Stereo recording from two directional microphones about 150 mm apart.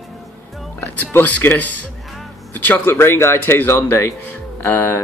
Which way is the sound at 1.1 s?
15° left (ahead or behind).